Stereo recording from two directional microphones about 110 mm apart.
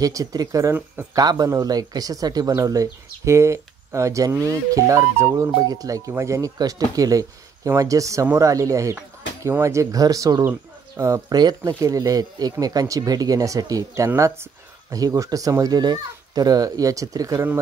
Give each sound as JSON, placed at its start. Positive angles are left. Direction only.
{"t": 0.0, "sound": "speech", "side_deg": -35}